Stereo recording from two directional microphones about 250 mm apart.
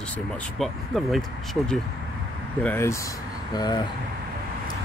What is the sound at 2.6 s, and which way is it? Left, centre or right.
Speech, centre.